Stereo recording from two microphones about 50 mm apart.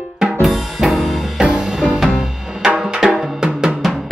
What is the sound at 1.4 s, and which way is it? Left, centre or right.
Music, centre.